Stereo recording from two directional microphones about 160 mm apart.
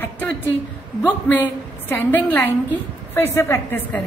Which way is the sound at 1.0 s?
10° left (ahead or behind).